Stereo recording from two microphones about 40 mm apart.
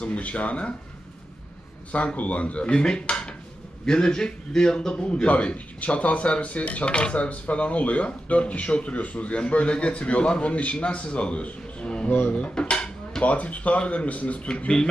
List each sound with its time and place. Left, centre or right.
0.0 s speech: left
1.9 s a man's voice: left
3.8 s a man's voice: centre
12.3 s dishes: left
12.5 s a sound: left
13.2 s speech: left